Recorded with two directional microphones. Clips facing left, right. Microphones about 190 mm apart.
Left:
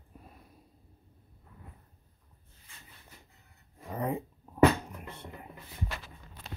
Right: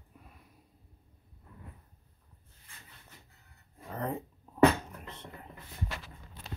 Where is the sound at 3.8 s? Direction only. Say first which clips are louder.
Left 3 dB; 10° left (ahead or behind).